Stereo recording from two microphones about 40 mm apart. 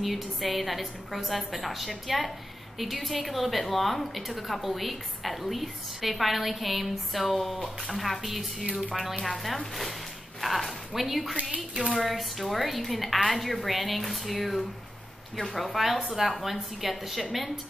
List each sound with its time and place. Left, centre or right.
0.0 s a woman's voice: centre
10.4 s a woman's voice: centre
11.5 s a woman's voice: right
12.0 s a woman's voice: centre